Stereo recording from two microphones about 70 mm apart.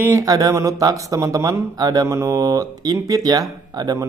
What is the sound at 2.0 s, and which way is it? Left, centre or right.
Speech, right.